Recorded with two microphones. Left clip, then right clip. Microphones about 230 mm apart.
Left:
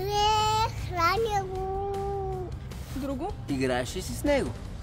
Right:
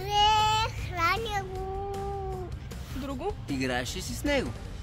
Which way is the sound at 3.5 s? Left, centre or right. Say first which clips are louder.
Left 4 dB; centre.